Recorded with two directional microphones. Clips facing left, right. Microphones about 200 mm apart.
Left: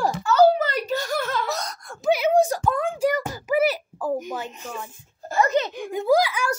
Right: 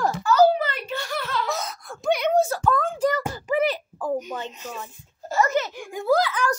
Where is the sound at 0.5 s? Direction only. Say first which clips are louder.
Left 3 dB; 40° left (ahead or behind).